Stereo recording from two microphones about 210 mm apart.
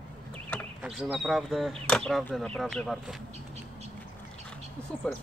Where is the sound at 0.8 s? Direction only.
5° right (ahead or behind).